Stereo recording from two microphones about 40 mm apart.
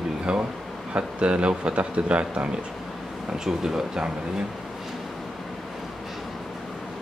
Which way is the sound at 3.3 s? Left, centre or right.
Centre.